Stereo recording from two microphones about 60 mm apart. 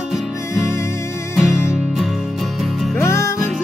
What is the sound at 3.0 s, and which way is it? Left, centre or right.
Music, left.